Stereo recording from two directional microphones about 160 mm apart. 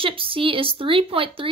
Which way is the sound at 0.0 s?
35° right (ahead or behind).